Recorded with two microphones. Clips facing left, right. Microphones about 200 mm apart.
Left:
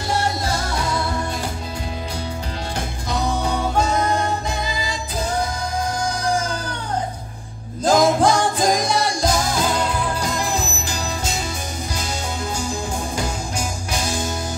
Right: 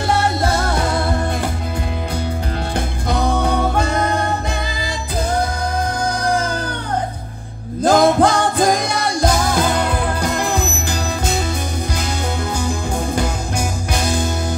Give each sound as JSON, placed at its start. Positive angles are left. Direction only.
{"t": 0.1, "sound": "music", "side_deg": -55}
{"t": 3.1, "sound": "music", "side_deg": -60}
{"t": 6.2, "sound": "music", "side_deg": -60}
{"t": 7.8, "sound": "music", "side_deg": -60}
{"t": 13.1, "sound": "music", "side_deg": -60}